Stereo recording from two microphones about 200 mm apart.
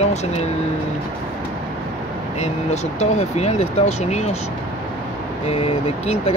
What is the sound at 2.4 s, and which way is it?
Speech, 35° left (ahead or behind).